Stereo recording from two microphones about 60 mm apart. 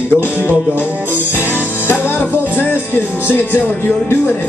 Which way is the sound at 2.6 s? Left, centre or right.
Left.